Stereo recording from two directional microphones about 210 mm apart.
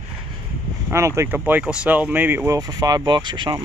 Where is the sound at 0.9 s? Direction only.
15° right (ahead or behind).